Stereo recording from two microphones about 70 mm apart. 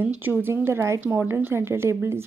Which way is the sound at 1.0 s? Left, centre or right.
Right.